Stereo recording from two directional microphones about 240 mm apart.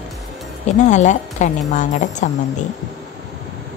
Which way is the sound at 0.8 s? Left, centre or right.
Left.